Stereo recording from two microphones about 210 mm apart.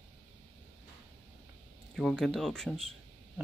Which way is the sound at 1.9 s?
Centre (ahead or behind).